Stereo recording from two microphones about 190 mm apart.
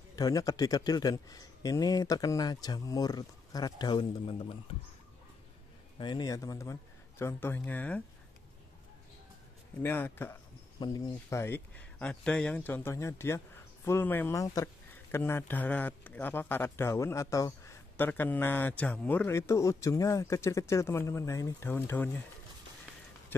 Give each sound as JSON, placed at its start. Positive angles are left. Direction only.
{"t": 0.1, "sound": "speech", "side_deg": 20}
{"t": 5.9, "sound": "speech", "side_deg": 25}
{"t": 9.8, "sound": "speech", "side_deg": 10}
{"t": 10.8, "sound": "speech", "side_deg": 20}